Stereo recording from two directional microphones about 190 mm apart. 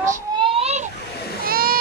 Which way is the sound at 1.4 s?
50° right (ahead or behind).